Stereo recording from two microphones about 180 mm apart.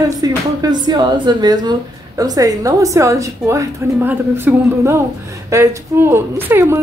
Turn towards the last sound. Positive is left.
turn(degrees=-15)  # may be behind; listen again after turning